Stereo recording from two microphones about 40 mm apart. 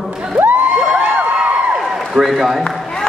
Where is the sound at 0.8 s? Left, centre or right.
Centre.